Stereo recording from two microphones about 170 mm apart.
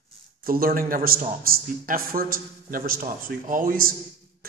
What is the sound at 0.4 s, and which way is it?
A man's voice, 60° right (ahead or behind).